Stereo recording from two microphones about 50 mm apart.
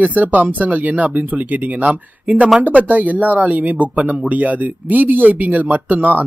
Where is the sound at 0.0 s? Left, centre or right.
Right.